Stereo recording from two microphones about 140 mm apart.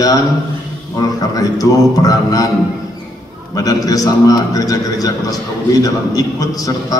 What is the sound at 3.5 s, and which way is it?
A man's voice, 25° left (ahead or behind).